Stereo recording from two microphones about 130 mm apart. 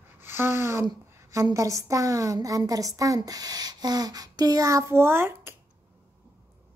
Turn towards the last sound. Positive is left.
turn(degrees=-20)  # may be behind; listen again after turning